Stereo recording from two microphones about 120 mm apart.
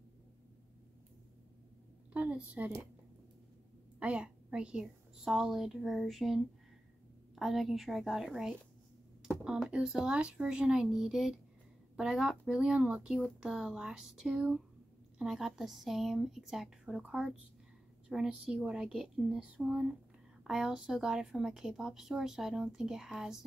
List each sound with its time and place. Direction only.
2.1 s a child's voice: 10° right (ahead or behind)
4.0 s a woman's voice: 10° right (ahead or behind)